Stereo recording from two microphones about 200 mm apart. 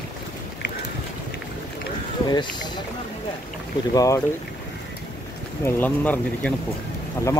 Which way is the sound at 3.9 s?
15° left (ahead or behind).